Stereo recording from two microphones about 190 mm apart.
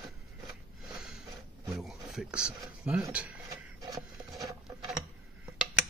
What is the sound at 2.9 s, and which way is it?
Speech, 10° right (ahead or behind).